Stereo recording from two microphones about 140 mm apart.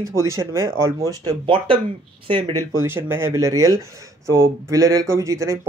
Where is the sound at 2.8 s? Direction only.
15° right (ahead or behind).